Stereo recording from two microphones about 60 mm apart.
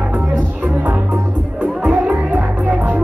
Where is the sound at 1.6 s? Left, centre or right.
Right.